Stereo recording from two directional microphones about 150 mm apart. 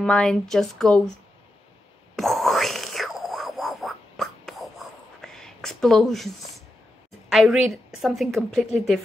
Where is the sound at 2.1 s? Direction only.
Centre (ahead or behind).